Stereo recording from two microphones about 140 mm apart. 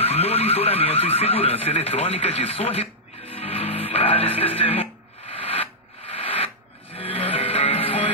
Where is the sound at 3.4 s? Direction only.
45° left (ahead or behind).